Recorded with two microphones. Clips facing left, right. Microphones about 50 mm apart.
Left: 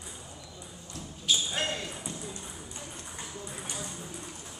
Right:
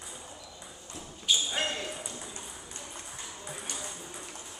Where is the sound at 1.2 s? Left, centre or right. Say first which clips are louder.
Even; centre.